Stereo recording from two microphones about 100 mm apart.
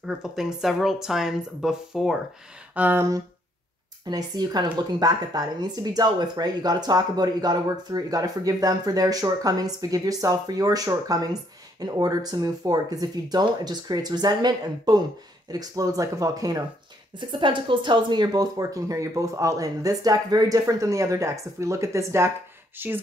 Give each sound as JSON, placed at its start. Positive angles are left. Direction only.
{"t": 0.0, "sound": "speech", "side_deg": -5}
{"t": 2.7, "sound": "a sound", "side_deg": -15}
{"t": 4.1, "sound": "speech", "side_deg": -40}
{"t": 17.2, "sound": "speech", "side_deg": -55}